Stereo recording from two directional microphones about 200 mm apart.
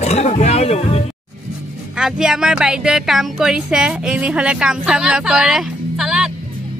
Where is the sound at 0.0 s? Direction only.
30° left (ahead or behind).